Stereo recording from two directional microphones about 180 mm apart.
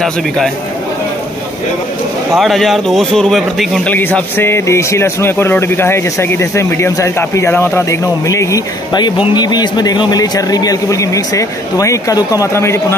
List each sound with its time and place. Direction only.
2.3 s a man's voice: centre (ahead or behind)
3.9 s speech: 10° left (ahead or behind)